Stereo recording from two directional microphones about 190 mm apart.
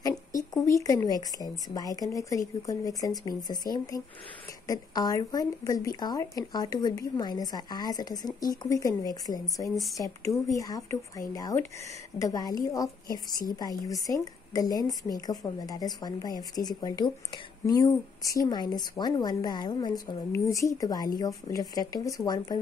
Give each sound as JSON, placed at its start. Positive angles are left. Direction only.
{"t": 0.4, "sound": "speech", "side_deg": 15}